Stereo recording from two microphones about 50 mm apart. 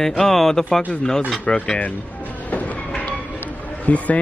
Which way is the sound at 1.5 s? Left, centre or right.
Left.